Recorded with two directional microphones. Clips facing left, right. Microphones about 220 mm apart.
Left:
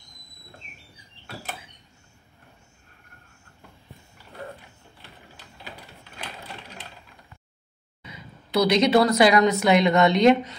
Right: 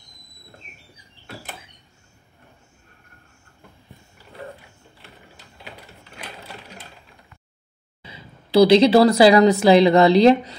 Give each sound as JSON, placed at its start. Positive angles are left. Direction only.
{"t": 8.0, "sound": "speech", "side_deg": -30}